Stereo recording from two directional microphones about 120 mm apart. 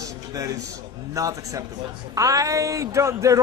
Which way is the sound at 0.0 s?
30° right (ahead or behind).